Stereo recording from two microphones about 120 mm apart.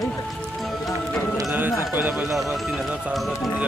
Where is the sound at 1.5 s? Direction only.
15° right (ahead or behind).